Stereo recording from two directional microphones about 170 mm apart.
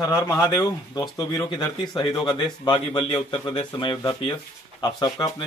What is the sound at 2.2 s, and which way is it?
A man's voice, 25° left (ahead or behind).